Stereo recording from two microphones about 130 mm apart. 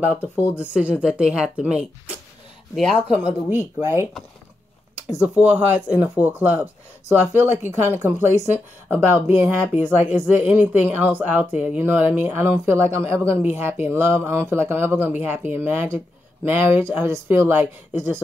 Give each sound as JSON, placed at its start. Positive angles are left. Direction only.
{"t": 0.0, "sound": "speech", "side_deg": -10}
{"t": 2.7, "sound": "speech", "side_deg": 5}
{"t": 3.1, "sound": "speech", "side_deg": -10}
{"t": 5.2, "sound": "speech", "side_deg": -15}